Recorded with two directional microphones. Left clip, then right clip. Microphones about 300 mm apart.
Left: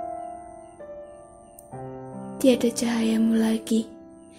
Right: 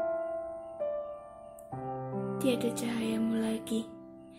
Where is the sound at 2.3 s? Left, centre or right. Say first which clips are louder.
Left 11 dB; centre.